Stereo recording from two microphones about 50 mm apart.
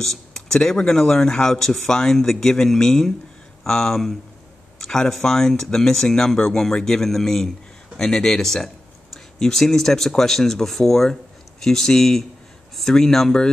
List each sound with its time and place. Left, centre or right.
0.0 s speech: centre